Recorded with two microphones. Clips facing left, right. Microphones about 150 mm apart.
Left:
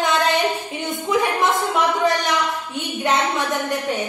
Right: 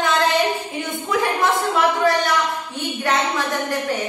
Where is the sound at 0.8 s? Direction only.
20° left (ahead or behind).